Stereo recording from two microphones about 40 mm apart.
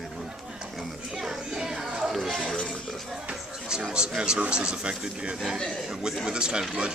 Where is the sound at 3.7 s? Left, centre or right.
Centre.